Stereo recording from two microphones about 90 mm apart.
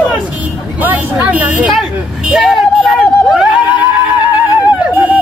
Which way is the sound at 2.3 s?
Centre (ahead or behind).